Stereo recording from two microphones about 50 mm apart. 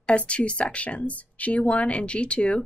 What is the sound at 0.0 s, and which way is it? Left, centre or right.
Speech, left.